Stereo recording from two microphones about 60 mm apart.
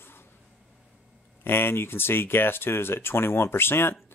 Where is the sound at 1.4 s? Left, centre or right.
Left.